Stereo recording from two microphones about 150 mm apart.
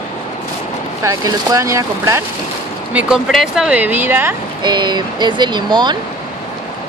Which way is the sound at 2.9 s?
5° right (ahead or behind).